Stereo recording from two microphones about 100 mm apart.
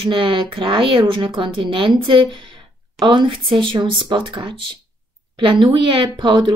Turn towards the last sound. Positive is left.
turn(degrees=-50)  # may be behind; listen again after turning